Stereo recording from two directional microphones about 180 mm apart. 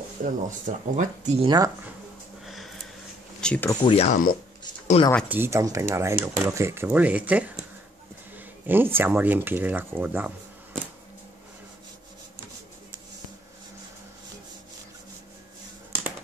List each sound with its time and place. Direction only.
0.2 s speech: 45° right (ahead or behind)
2.4 s a sound: centre (ahead or behind)
3.3 s speech: 5° left (ahead or behind)
3.8 s speech: 35° left (ahead or behind)
5.0 s speech: 30° left (ahead or behind)
5.3 s speech: 15° right (ahead or behind)
8.6 s speech: 10° right (ahead or behind)